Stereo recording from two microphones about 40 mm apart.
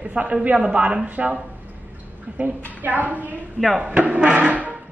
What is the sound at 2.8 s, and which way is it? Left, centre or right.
Speech, right.